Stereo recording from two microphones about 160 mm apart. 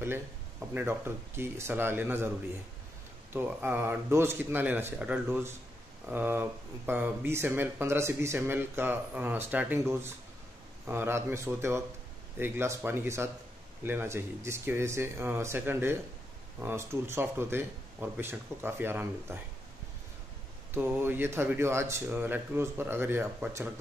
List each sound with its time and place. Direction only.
0.0 s speech: 15° right (ahead or behind)
3.3 s speech: 10° right (ahead or behind)
20.7 s speech: 15° right (ahead or behind)